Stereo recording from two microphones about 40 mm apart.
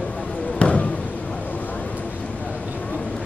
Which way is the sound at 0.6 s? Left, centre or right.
Left.